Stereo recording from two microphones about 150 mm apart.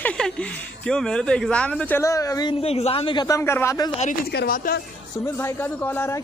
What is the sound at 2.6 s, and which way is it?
A man's voice, 40° left (ahead or behind).